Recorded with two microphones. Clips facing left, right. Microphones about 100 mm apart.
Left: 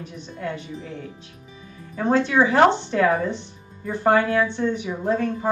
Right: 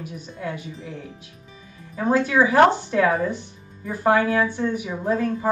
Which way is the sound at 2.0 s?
5° right (ahead or behind).